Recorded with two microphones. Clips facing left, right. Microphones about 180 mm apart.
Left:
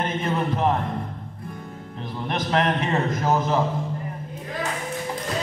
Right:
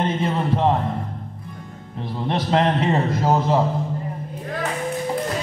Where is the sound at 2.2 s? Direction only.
30° right (ahead or behind).